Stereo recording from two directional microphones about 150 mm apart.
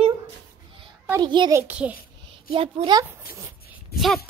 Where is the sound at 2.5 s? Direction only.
35° right (ahead or behind).